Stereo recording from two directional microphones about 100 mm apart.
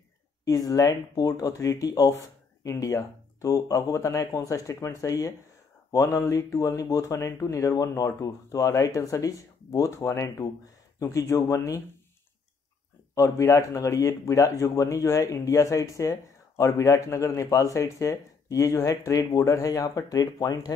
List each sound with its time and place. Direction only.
0.5 s speech: 35° left (ahead or behind)
13.1 s speech: 30° left (ahead or behind)